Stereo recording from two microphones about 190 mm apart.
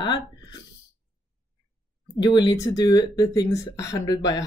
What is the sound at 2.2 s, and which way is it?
Speech, 25° left (ahead or behind).